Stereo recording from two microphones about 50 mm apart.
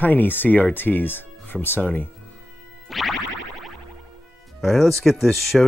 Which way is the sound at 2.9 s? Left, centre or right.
Centre.